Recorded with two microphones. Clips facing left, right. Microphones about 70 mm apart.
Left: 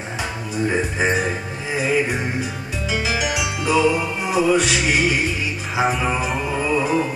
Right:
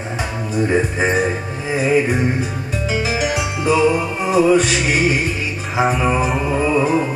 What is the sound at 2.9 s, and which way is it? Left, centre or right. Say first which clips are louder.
Music: right 2 dB; right.